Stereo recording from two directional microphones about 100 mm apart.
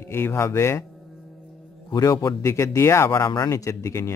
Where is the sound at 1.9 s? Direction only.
35° left (ahead or behind).